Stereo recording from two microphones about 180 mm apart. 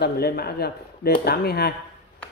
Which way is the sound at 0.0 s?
60° left (ahead or behind).